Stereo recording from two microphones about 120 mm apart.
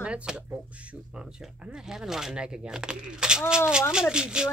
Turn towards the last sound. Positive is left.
turn(degrees=-5)  # may be behind; listen again after turning